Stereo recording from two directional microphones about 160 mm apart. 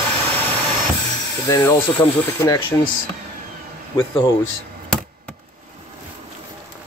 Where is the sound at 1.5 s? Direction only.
15° left (ahead or behind).